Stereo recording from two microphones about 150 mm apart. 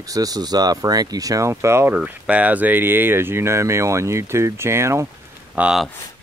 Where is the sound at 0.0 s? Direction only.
25° right (ahead or behind).